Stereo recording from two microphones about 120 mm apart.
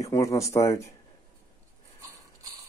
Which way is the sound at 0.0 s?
25° left (ahead or behind).